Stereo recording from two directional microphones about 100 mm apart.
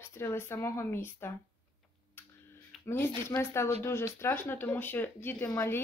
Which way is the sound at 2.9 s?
25° left (ahead or behind).